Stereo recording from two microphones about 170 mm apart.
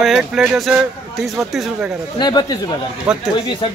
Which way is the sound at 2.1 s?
25° left (ahead or behind).